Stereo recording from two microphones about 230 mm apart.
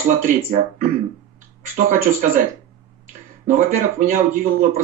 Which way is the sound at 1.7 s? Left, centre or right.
Right.